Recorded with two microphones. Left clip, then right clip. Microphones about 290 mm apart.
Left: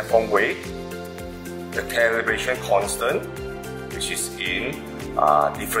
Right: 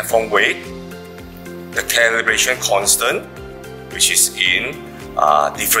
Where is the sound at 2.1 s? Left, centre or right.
Centre.